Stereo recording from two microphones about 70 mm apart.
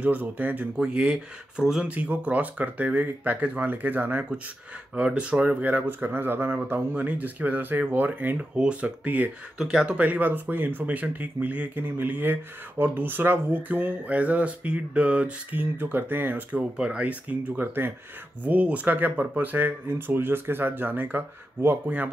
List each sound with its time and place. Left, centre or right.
0.0 s speech: right
0.7 s speech: centre
1.9 s speech: right
9.6 s speech: centre
9.9 s speech: right
15.6 s speech: right
16.7 s speech: centre